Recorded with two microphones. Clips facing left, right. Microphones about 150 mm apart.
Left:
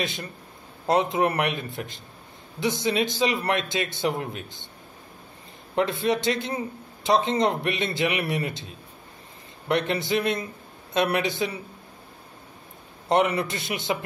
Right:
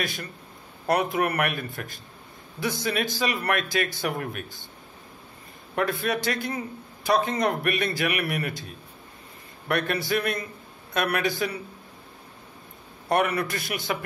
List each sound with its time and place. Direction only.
0.0 s a man's voice: 20° left (ahead or behind)
5.8 s a man's voice: 25° left (ahead or behind)
13.1 s a man's voice: 25° left (ahead or behind)